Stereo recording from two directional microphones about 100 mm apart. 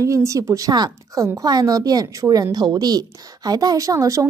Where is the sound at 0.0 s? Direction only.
30° right (ahead or behind).